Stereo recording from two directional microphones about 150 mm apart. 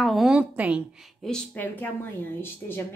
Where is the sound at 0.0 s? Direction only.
Centre (ahead or behind).